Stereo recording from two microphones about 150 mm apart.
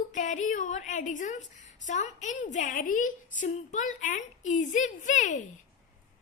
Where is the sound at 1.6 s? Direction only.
55° left (ahead or behind).